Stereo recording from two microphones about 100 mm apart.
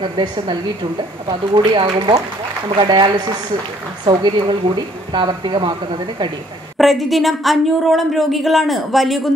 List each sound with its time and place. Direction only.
0.5 s a woman's voice: 45° right (ahead or behind)
6.8 s speech: centre (ahead or behind)